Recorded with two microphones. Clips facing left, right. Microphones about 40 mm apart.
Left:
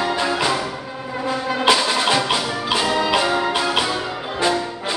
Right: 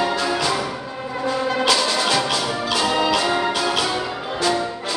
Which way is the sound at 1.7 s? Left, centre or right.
Centre.